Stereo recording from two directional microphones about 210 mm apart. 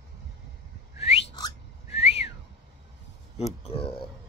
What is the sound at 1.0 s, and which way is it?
Whistling, 30° left (ahead or behind).